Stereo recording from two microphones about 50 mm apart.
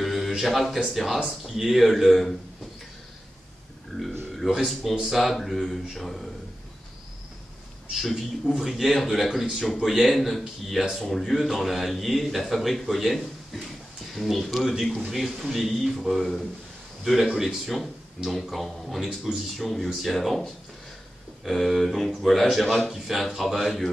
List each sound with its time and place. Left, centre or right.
0.0 s a sound: centre
0.4 s speech: centre
4.4 s speech: centre
8.1 s speech: centre